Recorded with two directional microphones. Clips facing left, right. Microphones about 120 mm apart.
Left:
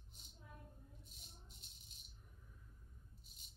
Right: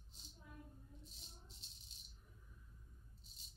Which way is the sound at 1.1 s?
30° right (ahead or behind).